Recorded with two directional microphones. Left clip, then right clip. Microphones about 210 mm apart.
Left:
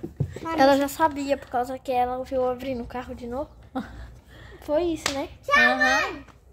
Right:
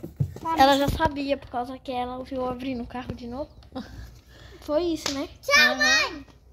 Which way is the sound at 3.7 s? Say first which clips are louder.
Left 5 dB; 25° left (ahead or behind).